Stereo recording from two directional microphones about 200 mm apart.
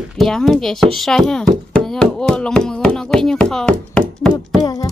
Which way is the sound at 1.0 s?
5° left (ahead or behind).